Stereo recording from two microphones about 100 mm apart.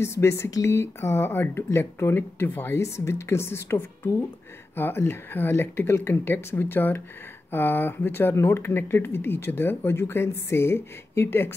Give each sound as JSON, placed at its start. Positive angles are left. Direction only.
{"t": 0.0, "sound": "speech", "side_deg": 25}